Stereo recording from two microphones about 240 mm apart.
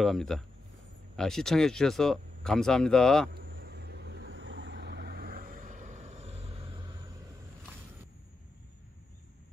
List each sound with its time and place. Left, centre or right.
0.0 s speech: centre
3.3 s vehicle: right